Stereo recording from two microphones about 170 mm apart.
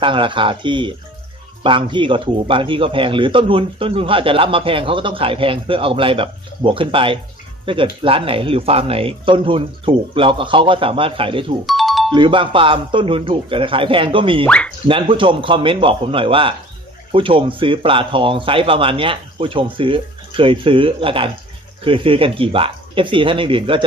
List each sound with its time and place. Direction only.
0.0 s a man's voice: 30° right (ahead or behind)
11.6 s music: centre (ahead or behind)
12.1 s a man's voice: 30° right (ahead or behind)
14.4 s speech: 5° left (ahead or behind)
14.9 s a man's voice: 30° right (ahead or behind)